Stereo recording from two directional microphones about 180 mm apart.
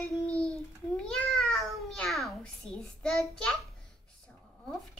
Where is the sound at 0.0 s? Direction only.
5° left (ahead or behind).